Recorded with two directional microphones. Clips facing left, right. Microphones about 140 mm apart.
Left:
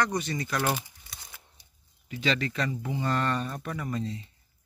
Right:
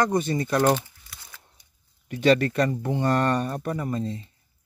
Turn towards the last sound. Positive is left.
turn(degrees=-35)  # may be behind; listen again after turning